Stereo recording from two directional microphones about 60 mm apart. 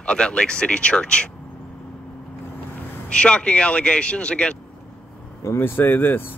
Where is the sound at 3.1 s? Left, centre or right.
Centre.